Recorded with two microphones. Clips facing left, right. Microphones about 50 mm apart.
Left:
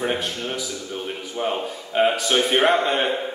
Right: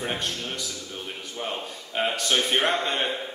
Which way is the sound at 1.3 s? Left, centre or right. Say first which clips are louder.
Left 8 dB; centre.